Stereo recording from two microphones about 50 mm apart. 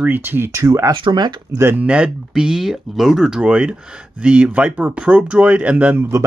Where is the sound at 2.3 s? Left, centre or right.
Centre; by 6.0 s right.